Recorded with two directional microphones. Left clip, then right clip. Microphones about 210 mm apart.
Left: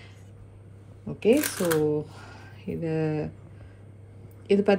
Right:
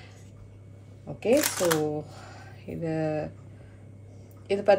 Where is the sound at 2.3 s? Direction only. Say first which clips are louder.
Left 4 dB; 40° left (ahead or behind).